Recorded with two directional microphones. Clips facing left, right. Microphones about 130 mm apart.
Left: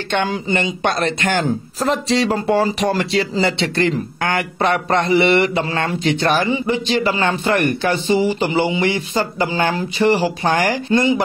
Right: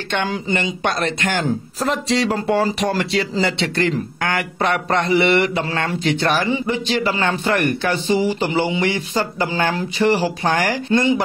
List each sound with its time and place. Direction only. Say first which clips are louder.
0.1 s speech: left 2 dB; 30° left (ahead or behind)
6.5 s speech: left 2 dB; 10° left (ahead or behind)